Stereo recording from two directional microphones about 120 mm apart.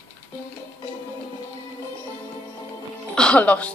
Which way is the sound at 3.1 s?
10° left (ahead or behind).